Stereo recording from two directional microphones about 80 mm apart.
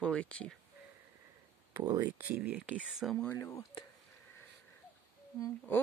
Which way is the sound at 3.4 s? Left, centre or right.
Left.